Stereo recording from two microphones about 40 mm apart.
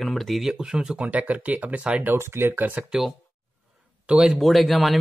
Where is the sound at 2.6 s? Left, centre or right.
Right.